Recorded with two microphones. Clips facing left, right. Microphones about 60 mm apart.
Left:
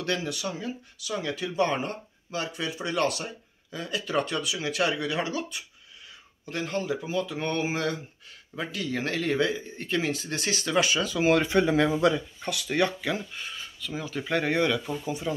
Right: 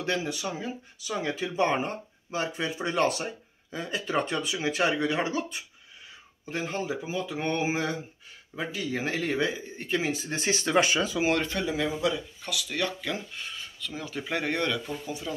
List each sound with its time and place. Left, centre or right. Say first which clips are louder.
0.0 s speech: even; centre
10.3 s speech: right 2 dB; right
11.6 s speech: left 5 dB; left
13.0 s speech: left 3 dB; centre